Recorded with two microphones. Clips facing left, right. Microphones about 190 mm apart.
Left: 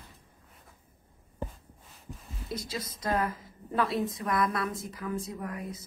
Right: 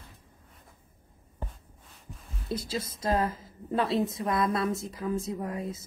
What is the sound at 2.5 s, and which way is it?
A woman's voice, 30° right (ahead or behind).